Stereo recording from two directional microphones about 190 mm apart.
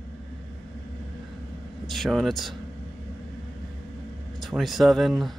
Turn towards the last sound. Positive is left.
turn(degrees=0)  # may be behind; listen again after turning